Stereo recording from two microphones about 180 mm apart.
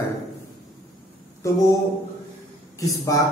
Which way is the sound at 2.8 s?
20° left (ahead or behind).